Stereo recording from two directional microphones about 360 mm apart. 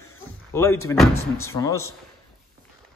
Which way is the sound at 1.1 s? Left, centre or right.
Left.